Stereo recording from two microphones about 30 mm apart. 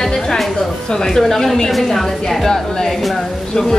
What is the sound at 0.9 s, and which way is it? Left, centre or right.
A woman's voice, centre.